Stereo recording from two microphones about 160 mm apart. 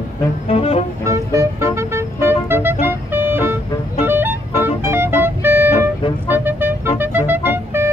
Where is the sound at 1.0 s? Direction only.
20° right (ahead or behind).